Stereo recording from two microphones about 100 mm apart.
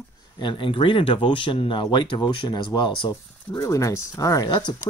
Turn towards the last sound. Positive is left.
turn(degrees=40)  # may be behind; listen again after turning